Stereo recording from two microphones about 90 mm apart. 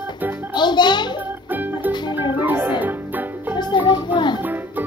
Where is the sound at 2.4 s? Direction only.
20° right (ahead or behind).